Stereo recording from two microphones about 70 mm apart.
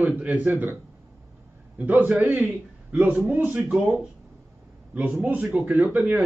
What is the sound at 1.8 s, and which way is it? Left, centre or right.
A man's voice, right.